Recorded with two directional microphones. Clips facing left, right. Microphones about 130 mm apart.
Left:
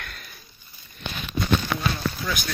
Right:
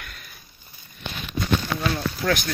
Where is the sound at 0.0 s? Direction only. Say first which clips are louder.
Left 2 dB; centre (ahead or behind).